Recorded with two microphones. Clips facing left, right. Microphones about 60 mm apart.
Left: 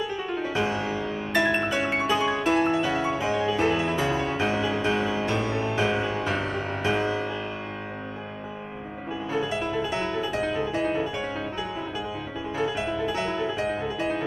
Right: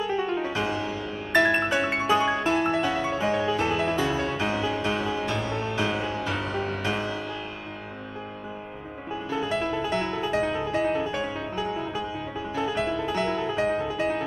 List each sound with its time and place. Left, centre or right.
0.1 s music: centre
0.5 s music: left
1.3 s music: centre
3.6 s music: centre
9.4 s music: centre
12.7 s music: centre